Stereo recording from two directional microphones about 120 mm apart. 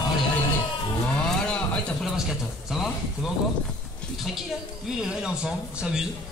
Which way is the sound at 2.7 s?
Centre (ahead or behind).